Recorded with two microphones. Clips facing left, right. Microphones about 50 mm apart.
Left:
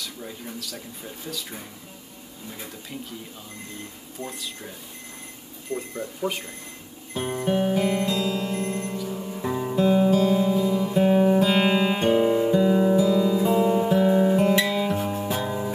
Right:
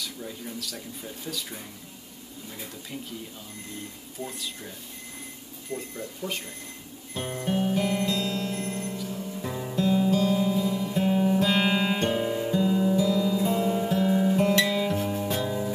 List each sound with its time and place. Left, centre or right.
4.2 s speech: centre
5.7 s speech: centre
7.2 s music: centre
11.4 s guitar: centre
12.9 s music: centre
15.4 s music: left